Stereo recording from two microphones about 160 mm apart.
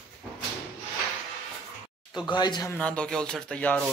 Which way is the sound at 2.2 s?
30° left (ahead or behind).